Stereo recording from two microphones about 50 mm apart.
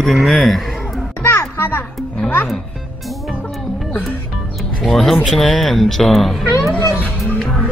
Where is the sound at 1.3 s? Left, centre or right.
Left.